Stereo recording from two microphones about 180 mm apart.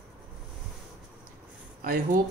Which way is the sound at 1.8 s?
55° right (ahead or behind).